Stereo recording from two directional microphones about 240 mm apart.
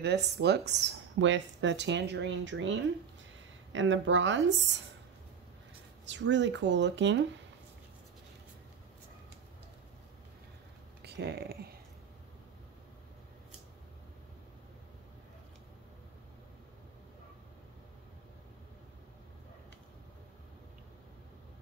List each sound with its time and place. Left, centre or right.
0.0 s speech: right
6.0 s speech: right
11.0 s speech: right